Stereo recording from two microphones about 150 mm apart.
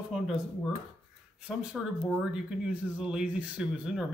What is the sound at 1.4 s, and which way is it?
Speech, 5° right (ahead or behind).